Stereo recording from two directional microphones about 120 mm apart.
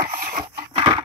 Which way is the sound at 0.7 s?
50° right (ahead or behind).